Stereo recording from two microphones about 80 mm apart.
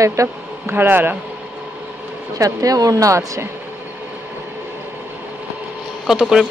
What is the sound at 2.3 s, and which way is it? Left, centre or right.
Speech, right.